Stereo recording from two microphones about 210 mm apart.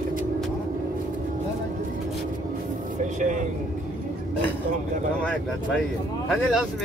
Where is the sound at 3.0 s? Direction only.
35° right (ahead or behind).